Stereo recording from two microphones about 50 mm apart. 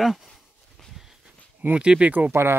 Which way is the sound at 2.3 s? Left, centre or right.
Right.